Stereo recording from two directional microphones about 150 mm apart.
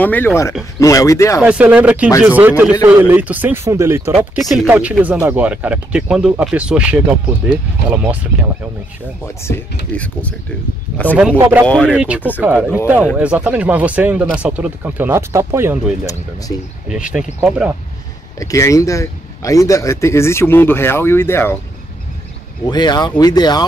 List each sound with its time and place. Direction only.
0.0 s speech: 10° left (ahead or behind)
1.4 s speech: 10° right (ahead or behind)
4.4 s speech: centre (ahead or behind)
9.4 s speech: 15° left (ahead or behind)
11.3 s speech: 15° right (ahead or behind)
11.6 s speech: 5° left (ahead or behind)
11.9 s speech: 5° right (ahead or behind)
16.9 s speech: 5° right (ahead or behind)
18.4 s speech: 20° left (ahead or behind)
22.7 s speech: 30° left (ahead or behind)